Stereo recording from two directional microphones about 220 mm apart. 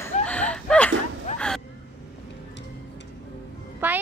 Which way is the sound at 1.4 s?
5° left (ahead or behind).